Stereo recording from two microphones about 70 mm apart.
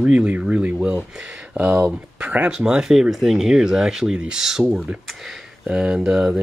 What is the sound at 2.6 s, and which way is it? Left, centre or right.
Rub, centre.